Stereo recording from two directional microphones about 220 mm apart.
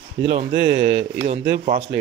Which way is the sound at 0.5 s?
50° right (ahead or behind).